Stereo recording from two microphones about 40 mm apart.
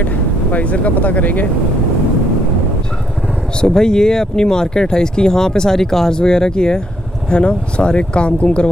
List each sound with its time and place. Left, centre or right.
0.0 s speech: left
3.6 s speech: centre